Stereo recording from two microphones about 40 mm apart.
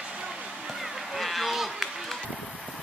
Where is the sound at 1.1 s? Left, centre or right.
Centre.